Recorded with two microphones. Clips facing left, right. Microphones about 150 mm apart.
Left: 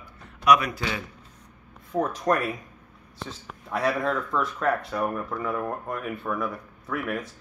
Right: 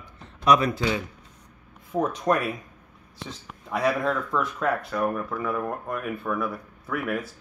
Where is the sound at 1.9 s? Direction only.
Centre (ahead or behind).